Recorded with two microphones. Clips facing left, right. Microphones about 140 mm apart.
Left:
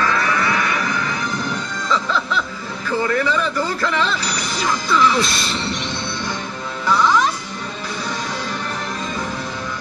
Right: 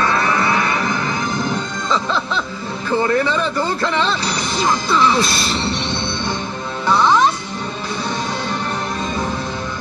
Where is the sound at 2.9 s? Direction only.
30° right (ahead or behind).